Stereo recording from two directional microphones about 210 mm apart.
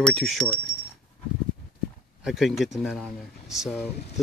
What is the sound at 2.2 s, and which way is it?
Speech, centre (ahead or behind).